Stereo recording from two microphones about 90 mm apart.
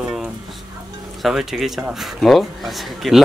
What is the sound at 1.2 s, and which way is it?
Speech, centre (ahead or behind).